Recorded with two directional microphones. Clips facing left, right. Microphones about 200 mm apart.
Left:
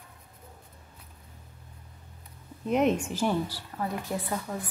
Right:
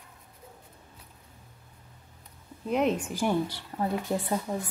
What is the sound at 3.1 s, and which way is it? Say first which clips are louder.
A woman's voice: right 1 dB; 15° right (ahead or behind).